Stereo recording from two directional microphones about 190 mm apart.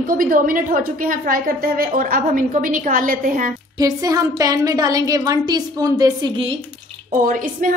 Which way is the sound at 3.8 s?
20° right (ahead or behind).